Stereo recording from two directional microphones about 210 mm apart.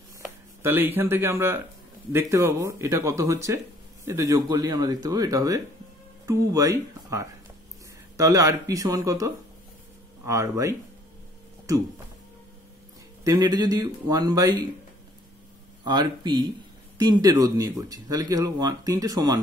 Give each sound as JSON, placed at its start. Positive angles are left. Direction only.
{"t": 0.6, "sound": "speech", "side_deg": -10}
{"t": 13.2, "sound": "speech", "side_deg": -20}
{"t": 15.8, "sound": "speech", "side_deg": -20}